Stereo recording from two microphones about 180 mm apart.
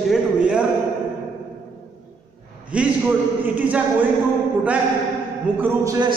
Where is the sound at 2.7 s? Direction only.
5° right (ahead or behind).